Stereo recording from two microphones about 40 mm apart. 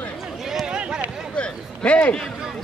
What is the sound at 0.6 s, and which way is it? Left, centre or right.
Run, centre.